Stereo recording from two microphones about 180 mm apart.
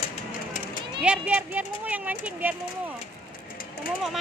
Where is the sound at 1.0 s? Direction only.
5° right (ahead or behind).